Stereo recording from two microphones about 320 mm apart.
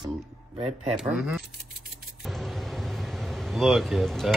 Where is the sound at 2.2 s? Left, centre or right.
Centre.